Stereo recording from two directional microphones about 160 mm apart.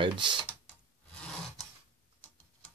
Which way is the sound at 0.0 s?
30° right (ahead or behind).